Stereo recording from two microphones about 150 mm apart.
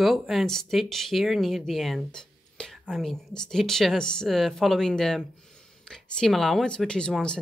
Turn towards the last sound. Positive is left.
turn(degrees=5)  # may be behind; listen again after turning